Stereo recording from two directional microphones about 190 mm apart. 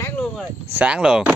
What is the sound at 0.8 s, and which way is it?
Speech, 5° right (ahead or behind).